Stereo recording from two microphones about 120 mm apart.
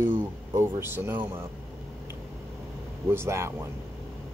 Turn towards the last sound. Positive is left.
turn(degrees=-20)  # may be behind; listen again after turning